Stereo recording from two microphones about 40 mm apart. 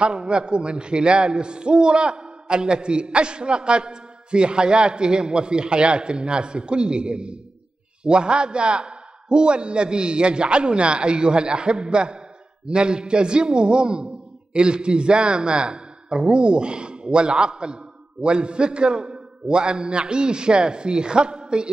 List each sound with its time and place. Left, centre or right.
0.0 s a man's voice: right